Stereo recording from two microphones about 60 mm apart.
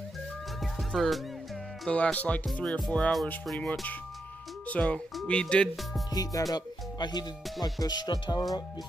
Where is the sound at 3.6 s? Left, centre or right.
Left.